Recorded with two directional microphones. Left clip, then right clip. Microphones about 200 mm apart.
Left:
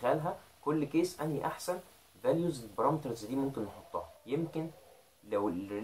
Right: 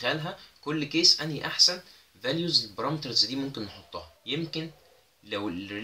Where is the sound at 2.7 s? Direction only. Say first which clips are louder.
Right 2 dB; 35° right (ahead or behind).